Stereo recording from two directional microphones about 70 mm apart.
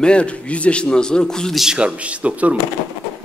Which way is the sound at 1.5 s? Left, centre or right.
Centre.